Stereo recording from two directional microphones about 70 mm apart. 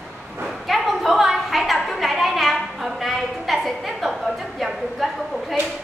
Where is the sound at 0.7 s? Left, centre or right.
Centre.